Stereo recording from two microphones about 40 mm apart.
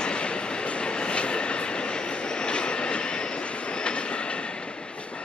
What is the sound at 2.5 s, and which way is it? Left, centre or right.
Vehicle, left.